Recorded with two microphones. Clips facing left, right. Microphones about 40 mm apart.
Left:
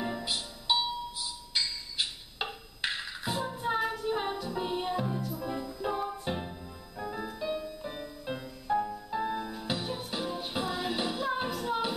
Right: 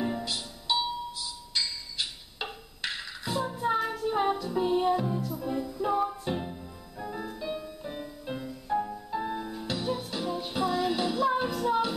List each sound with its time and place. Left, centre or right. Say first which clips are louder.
0.2 s music: even; centre